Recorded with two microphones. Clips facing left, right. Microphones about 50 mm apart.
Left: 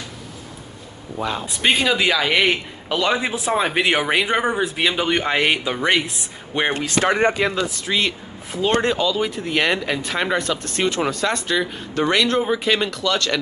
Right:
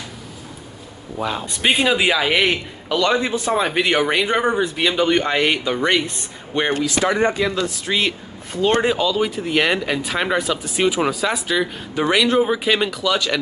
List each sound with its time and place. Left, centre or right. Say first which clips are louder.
1.1 s speech: right 1 dB; centre
1.8 s a man's voice: right 1 dB; centre
6.7 s speech: right 1 dB; left
7.6 s speech: right 1 dB; centre